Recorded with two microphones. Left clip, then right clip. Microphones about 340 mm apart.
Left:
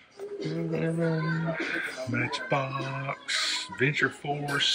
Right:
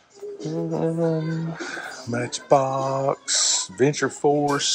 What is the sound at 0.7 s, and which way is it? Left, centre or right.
Speech, centre.